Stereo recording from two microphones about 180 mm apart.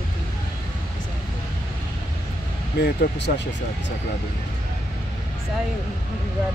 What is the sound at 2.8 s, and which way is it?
Speech, 65° left (ahead or behind).